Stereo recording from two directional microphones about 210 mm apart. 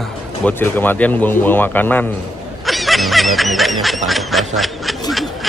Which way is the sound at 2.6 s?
Centre (ahead or behind).